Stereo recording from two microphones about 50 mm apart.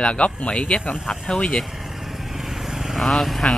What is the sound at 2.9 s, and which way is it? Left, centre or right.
Speech, centre.